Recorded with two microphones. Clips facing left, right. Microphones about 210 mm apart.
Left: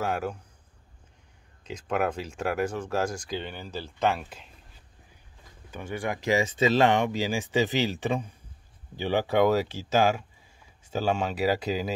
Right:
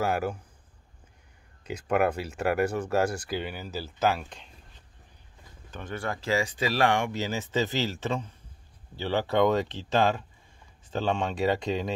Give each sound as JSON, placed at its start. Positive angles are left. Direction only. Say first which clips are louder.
{"t": 0.0, "sound": "speech", "louder": "right 2 dB", "side_deg": -5}
{"t": 1.6, "sound": "speech", "louder": "right 3 dB", "side_deg": -10}
{"t": 5.7, "sound": "speech", "louder": "left 2 dB", "side_deg": 10}